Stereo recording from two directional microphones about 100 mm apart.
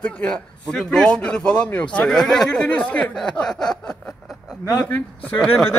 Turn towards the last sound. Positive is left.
turn(degrees=10)  # may be behind; listen again after turning